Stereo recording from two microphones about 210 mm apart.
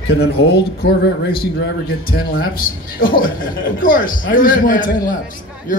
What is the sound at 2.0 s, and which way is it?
A man's voice, 45° left (ahead or behind).